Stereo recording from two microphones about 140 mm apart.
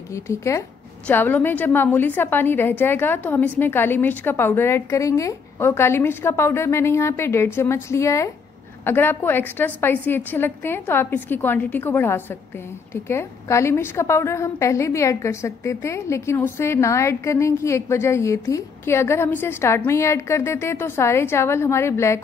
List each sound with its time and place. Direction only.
0.1 s a woman's voice: 20° left (ahead or behind)